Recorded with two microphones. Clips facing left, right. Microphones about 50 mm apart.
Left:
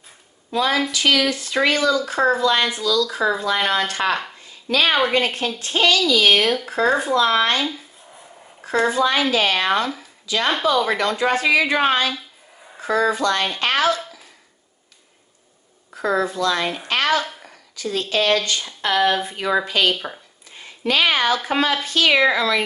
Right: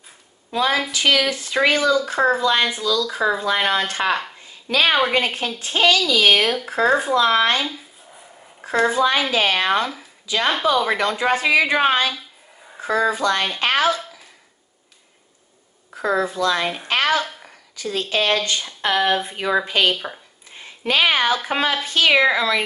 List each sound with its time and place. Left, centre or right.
0.5 s a woman's voice: centre
8.9 s speech: right
12.1 s a sound: centre
12.8 s speech: centre
16.0 s speech: centre
17.2 s a sound: centre
17.9 s speech: right
19.9 s speech: centre
20.5 s speech: right